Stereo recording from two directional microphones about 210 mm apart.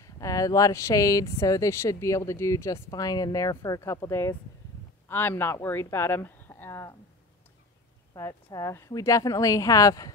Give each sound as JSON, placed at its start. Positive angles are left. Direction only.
{"t": 0.0, "sound": "speech", "side_deg": 15}
{"t": 8.1, "sound": "speech", "side_deg": 15}